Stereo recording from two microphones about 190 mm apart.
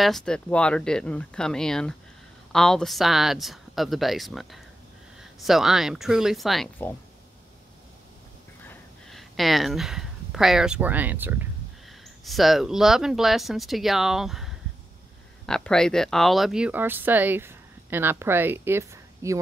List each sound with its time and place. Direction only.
0.0 s speech: 5° left (ahead or behind)
8.6 s speech: centre (ahead or behind)